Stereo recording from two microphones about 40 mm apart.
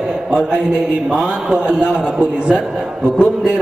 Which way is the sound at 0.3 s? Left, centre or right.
Centre.